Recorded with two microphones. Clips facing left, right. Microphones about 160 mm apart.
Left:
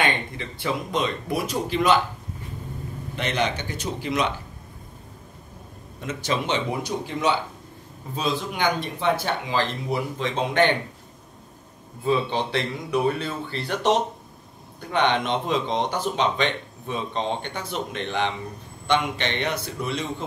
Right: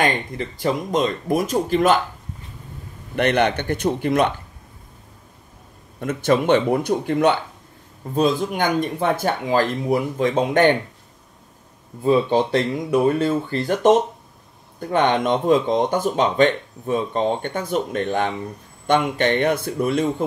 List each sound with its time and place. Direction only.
0.0 s speech: 40° right (ahead or behind)
3.2 s speech: 60° right (ahead or behind)
5.9 s speech: 55° right (ahead or behind)
12.0 s speech: 45° right (ahead or behind)